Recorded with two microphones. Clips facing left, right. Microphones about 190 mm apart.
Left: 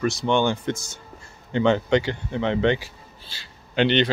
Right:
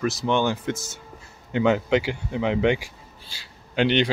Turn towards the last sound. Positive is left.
turn(degrees=-5)  # may be behind; listen again after turning